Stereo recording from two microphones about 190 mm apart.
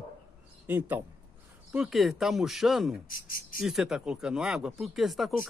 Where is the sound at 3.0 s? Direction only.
50° left (ahead or behind).